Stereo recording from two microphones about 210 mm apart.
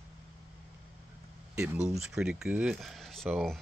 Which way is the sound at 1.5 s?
10° right (ahead or behind).